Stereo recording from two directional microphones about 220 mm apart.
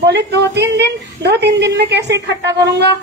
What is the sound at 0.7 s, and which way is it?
A woman's voice, 50° right (ahead or behind).